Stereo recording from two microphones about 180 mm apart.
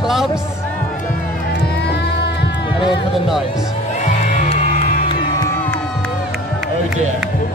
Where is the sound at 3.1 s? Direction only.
Centre (ahead or behind).